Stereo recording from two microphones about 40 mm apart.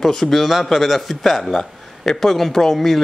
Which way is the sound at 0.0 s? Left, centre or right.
Centre.